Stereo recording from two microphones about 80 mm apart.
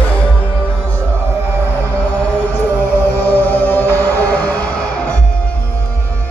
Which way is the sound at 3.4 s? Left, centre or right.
Left.